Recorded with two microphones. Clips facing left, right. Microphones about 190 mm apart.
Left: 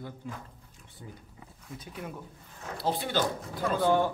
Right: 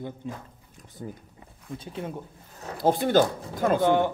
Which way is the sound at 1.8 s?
25° right (ahead or behind).